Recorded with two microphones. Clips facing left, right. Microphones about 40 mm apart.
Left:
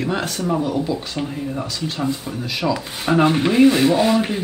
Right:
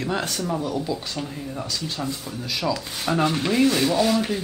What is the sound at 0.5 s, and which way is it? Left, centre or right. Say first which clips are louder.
Speech: left 6 dB; left.